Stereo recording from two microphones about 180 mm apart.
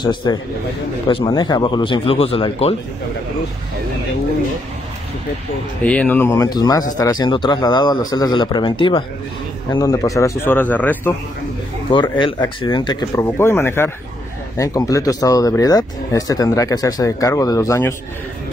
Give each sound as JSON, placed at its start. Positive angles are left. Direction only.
{"t": 0.0, "sound": "speech", "side_deg": 25}
{"t": 5.8, "sound": "a man's voice", "side_deg": 5}
{"t": 11.9, "sound": "speech", "side_deg": 25}